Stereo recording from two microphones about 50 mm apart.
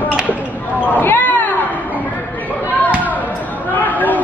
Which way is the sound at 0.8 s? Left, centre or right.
Left.